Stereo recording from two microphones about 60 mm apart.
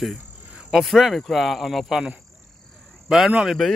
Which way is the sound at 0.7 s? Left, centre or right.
Centre.